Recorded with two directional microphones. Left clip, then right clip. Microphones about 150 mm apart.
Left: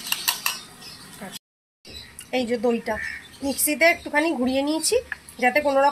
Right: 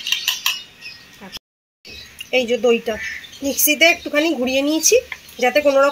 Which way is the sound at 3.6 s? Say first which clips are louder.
Right 5 dB; 45° right (ahead or behind).